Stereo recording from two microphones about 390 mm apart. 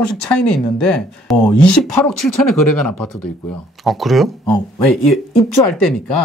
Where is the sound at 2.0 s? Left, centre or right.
Left.